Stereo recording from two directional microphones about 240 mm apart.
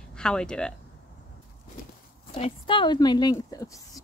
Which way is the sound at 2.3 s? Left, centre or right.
Left.